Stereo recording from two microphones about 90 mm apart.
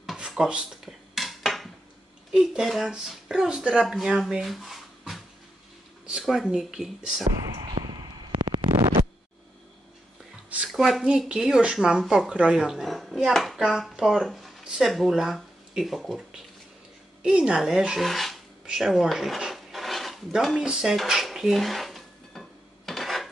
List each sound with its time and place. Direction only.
0.0 s dishes: centre (ahead or behind)
2.3 s speech: 5° right (ahead or behind)
7.6 s a sound: 50° right (ahead or behind)
10.7 s speech: centre (ahead or behind)
17.2 s dishes: 10° right (ahead or behind)